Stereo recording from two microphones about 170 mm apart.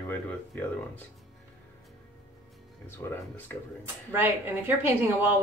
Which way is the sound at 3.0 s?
10° left (ahead or behind).